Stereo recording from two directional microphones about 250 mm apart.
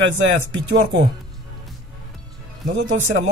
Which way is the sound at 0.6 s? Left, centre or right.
Right.